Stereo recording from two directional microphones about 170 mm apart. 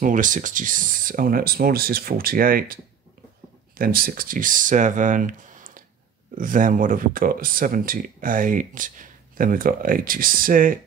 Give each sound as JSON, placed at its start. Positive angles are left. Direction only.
{"t": 0.0, "sound": "speech", "side_deg": -50}